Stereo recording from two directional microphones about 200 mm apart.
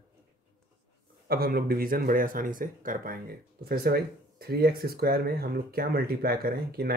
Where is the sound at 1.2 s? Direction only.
50° right (ahead or behind).